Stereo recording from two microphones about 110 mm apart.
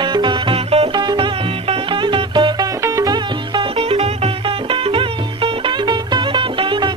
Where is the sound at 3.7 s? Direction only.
65° right (ahead or behind).